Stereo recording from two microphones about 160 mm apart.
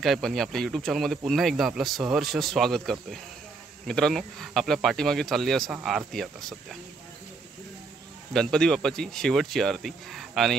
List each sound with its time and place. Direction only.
0.0 s speech: centre (ahead or behind)
8.3 s speech: 5° left (ahead or behind)